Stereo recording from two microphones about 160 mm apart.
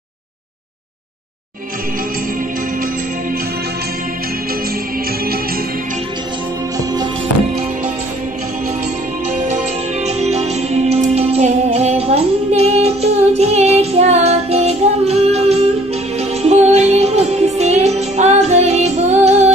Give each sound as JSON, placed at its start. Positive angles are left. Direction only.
{"t": 9.4, "sound": "music", "side_deg": -45}